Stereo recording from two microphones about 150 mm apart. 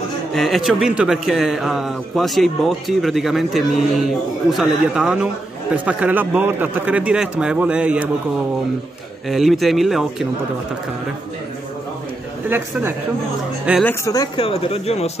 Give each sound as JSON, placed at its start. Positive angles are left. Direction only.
{"t": 0.3, "sound": "a man's voice", "side_deg": 0}
{"t": 9.3, "sound": "a man's voice", "side_deg": 0}
{"t": 12.4, "sound": "speech", "side_deg": -15}
{"t": 13.8, "sound": "speech", "side_deg": 20}